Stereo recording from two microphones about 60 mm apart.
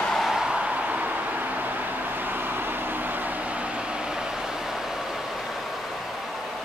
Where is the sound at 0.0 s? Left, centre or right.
Centre.